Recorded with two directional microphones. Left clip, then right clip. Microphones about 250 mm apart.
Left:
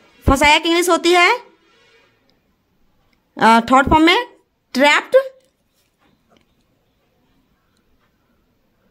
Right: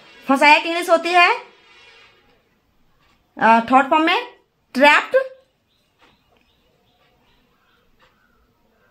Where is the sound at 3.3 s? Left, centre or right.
Left.